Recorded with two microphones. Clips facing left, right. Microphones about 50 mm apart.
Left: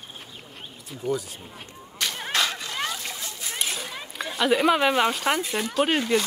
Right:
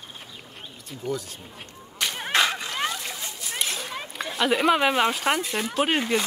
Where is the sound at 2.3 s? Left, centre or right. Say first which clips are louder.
Right 4 dB; centre.